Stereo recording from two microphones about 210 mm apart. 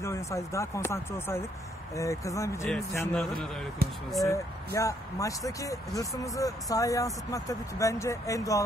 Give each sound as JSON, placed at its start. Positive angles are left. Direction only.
{"t": 0.0, "sound": "speech", "side_deg": 15}
{"t": 3.8, "sound": "speech", "side_deg": -45}
{"t": 4.7, "sound": "speech", "side_deg": 15}